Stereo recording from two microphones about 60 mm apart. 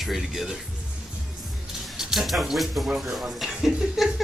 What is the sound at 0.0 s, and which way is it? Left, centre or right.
Speech, centre.